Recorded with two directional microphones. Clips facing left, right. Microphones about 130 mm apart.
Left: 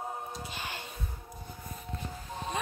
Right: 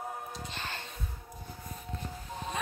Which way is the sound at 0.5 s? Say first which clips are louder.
Even; 10° left (ahead or behind).